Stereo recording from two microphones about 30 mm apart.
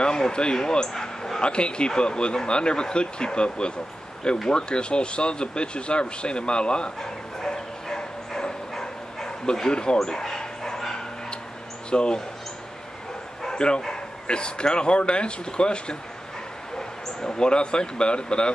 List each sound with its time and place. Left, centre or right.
0.0 s speech: left
1.4 s speech: left
7.0 s bow-wow: left
9.7 s speech: left
9.9 s dog: left
11.9 s speech: left
13.5 s bow-wow: left
14.2 s speech: left